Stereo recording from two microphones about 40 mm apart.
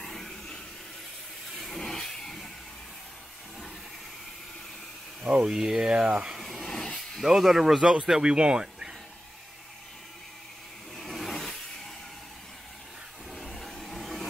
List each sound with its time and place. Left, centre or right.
0.0 s a sound: centre
5.4 s speech: centre
6.4 s vehicle: centre
7.2 s speech: centre
11.0 s vehicle: centre
13.3 s a sound: centre